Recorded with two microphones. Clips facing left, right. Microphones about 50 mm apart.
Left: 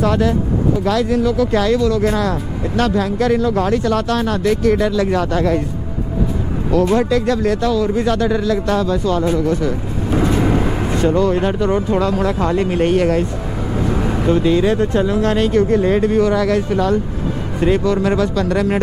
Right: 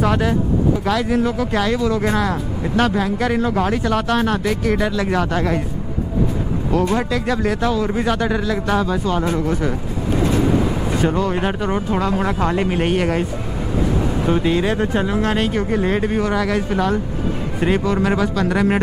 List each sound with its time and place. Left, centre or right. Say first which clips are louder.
0.0 s speech: left 2 dB; centre
1.2 s speech: left 4 dB; right
1.5 s speech: left 3 dB; centre
6.9 s speech: left 4 dB; centre
7.6 s speech: left 3 dB; centre
11.0 s speech: left 5 dB; centre
14.2 s speech: left 4 dB; centre